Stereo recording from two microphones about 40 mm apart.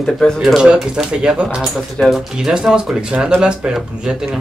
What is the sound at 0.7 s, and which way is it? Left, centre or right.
Speech, centre.